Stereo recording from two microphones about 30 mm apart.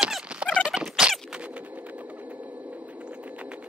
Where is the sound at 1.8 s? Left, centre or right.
Right.